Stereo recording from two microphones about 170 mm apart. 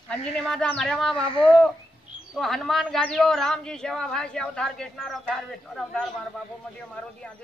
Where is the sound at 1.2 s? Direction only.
30° left (ahead or behind).